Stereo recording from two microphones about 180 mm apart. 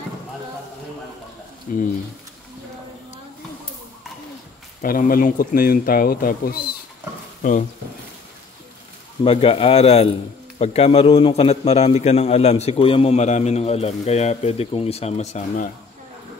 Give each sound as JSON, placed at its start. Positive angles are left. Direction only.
{"t": 1.7, "sound": "speech", "side_deg": 50}
{"t": 4.8, "sound": "speech", "side_deg": 50}
{"t": 9.2, "sound": "a man's voice", "side_deg": 30}